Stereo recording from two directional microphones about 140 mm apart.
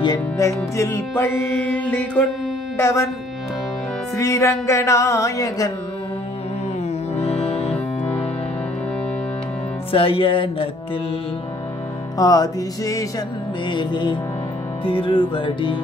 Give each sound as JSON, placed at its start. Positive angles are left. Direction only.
{"t": 0.0, "sound": "music", "side_deg": 25}
{"t": 2.8, "sound": "music", "side_deg": 20}
{"t": 4.2, "sound": "music", "side_deg": 20}
{"t": 7.2, "sound": "music", "side_deg": 50}
{"t": 9.9, "sound": "music", "side_deg": 40}
{"t": 12.2, "sound": "music", "side_deg": 25}